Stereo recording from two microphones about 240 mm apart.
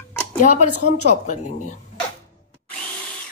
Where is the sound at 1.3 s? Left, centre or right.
Left.